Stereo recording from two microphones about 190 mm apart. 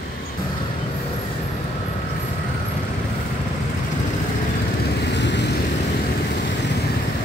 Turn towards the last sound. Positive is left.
turn(degrees=65)  # may be behind; listen again after turning